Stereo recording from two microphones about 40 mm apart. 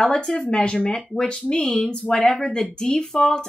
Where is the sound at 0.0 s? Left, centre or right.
Centre.